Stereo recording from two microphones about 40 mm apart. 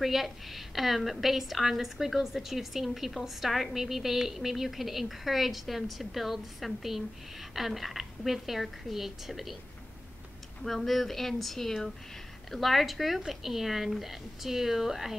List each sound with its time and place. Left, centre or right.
0.0 s a woman's voice: centre
10.6 s a woman's voice: centre